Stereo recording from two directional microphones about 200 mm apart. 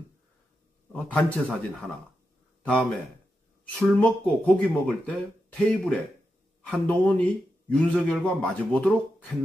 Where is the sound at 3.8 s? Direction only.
5° left (ahead or behind).